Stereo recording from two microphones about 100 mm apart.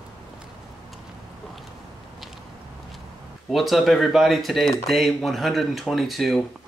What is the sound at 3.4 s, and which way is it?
Speech, centre (ahead or behind).